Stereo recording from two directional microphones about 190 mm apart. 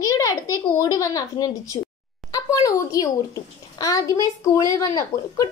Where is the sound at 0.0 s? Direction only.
15° left (ahead or behind).